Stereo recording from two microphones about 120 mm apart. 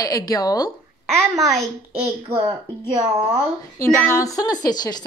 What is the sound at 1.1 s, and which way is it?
Speech, 25° right (ahead or behind).